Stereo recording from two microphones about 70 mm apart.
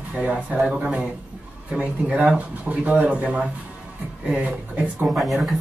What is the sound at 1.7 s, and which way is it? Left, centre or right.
Speech, centre.